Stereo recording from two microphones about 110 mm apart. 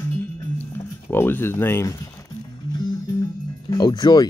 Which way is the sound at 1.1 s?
20° left (ahead or behind).